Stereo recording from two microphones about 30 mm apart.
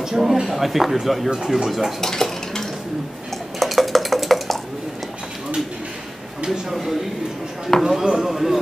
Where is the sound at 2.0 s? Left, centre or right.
Centre.